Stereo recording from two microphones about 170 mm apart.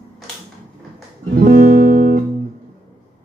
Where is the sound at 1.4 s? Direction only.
55° right (ahead or behind).